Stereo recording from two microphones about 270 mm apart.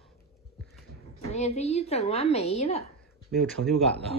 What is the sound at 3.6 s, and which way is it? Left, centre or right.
Speech, right.